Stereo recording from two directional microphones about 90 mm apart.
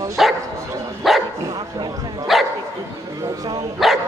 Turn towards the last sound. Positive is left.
turn(degrees=-5)  # may be behind; listen again after turning